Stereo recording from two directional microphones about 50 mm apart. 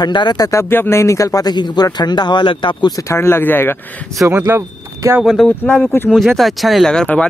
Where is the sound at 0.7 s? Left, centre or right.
Left.